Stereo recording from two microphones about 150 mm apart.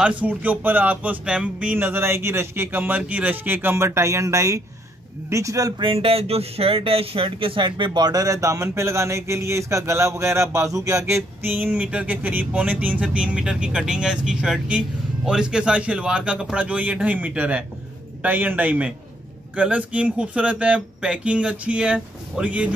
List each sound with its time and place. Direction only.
0.0 s speech: 10° right (ahead or behind)